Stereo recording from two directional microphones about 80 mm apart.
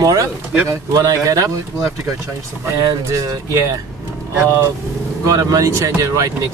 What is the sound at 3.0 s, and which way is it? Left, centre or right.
Speech, right.